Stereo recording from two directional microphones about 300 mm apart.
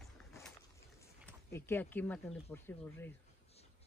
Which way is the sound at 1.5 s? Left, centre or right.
Centre.